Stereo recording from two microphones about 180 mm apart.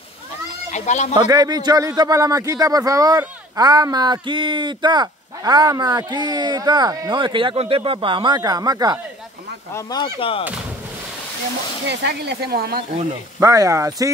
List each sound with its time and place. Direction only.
0.7 s speech: 40° left (ahead or behind)
1.1 s a man's voice: 20° right (ahead or behind)
9.8 s speech: 20° left (ahead or behind)
11.9 s speech: 70° right (ahead or behind)
13.4 s speech: 20° right (ahead or behind)